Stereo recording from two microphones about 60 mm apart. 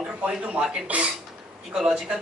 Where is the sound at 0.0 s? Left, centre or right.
Centre.